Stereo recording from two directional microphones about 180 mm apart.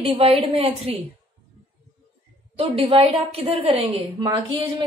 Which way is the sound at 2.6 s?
30° right (ahead or behind).